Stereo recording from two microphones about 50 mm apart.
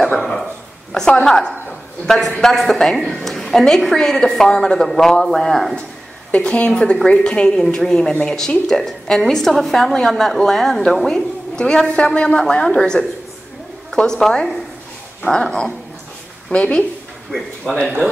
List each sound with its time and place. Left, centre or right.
0.1 s a sound: centre
0.9 s a woman's voice: centre
6.3 s a woman's voice: left